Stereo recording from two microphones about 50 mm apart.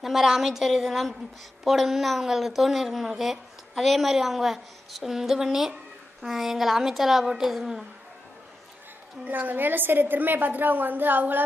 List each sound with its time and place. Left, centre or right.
0.0 s a woman's voice: centre
9.2 s a woman's voice: right